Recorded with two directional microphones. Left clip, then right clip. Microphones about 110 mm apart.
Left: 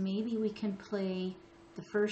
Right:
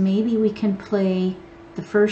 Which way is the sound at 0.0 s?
Centre (ahead or behind).